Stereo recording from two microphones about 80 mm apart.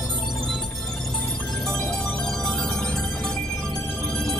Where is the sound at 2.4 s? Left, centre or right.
Centre.